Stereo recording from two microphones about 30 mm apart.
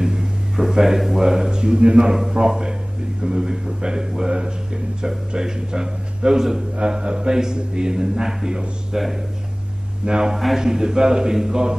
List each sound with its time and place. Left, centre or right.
0.0 s a sound: right
1.2 s a man's voice: centre
8.9 s a man's voice: centre
10.0 s a man's voice: right
10.3 s a man's voice: centre
10.6 s a man's voice: centre